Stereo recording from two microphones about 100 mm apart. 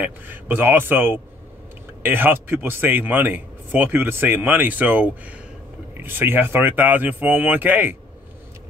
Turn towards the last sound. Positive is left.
turn(degrees=-20)  # may be behind; listen again after turning